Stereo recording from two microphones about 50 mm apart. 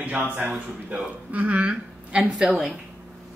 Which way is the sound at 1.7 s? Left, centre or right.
Centre.